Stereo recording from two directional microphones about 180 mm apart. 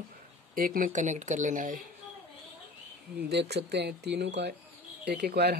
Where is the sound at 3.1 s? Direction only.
65° right (ahead or behind).